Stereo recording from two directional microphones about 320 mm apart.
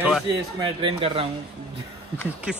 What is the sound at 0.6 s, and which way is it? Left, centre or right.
Speech, centre.